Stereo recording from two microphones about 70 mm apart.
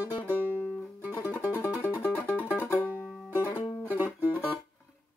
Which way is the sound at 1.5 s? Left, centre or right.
Left.